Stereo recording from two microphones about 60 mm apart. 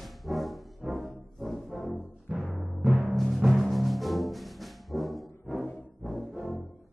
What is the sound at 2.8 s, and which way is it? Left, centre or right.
Timpani, centre.